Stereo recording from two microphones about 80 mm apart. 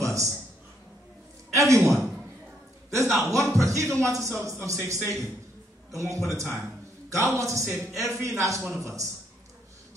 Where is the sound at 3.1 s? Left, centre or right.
Right.